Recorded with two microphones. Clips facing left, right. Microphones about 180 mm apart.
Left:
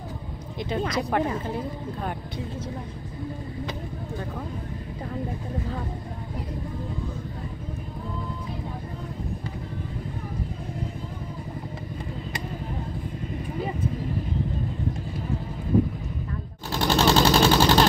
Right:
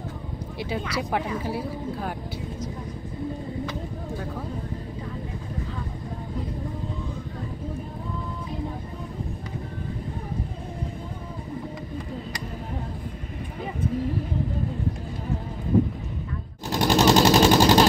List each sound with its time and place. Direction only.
0.6 s speech: 10° right (ahead or behind)
16.7 s machine gun: 15° right (ahead or behind)
17.5 s vehicle: 15° right (ahead or behind)